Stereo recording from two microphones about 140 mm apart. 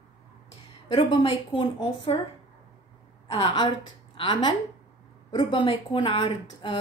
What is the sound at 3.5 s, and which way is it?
A woman's voice, 40° left (ahead or behind).